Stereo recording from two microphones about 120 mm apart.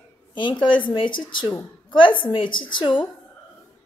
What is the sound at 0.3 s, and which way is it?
A woman's voice, 40° left (ahead or behind).